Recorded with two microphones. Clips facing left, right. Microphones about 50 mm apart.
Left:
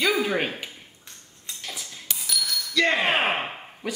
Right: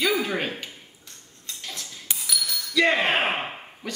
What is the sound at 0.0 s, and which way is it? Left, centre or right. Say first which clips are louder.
Speech: left 1 dB; centre.